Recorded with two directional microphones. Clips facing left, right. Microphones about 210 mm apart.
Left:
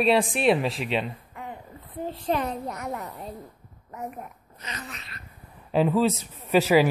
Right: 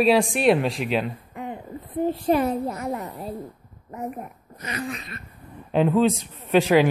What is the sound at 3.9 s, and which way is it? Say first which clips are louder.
Speech: right 4 dB; 45° right (ahead or behind).